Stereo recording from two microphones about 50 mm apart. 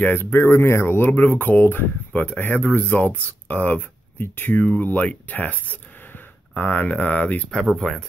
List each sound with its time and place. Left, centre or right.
0.0 s speech: left
4.2 s speech: left
7.7 s speech: centre